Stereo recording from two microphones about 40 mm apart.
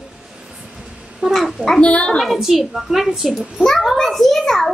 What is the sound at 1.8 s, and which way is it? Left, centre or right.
Speech, left.